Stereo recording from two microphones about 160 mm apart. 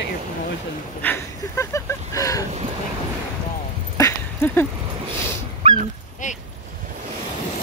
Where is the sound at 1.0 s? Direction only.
15° left (ahead or behind).